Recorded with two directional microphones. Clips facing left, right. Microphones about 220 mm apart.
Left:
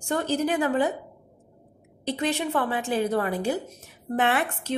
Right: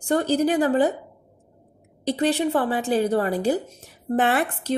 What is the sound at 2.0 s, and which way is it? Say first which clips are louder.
A woman's voice: right 5 dB; 35° right (ahead or behind).